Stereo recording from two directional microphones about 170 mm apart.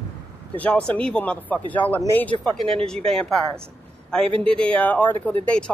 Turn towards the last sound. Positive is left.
turn(degrees=5)  # may be behind; listen again after turning